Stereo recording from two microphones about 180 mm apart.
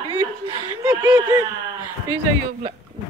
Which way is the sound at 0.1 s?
20° left (ahead or behind).